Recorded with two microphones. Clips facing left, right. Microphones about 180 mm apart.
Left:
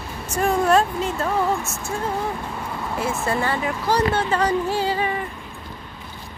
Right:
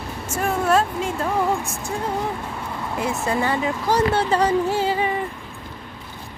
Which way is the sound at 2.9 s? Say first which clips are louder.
Right 1 dB; 20° right (ahead or behind).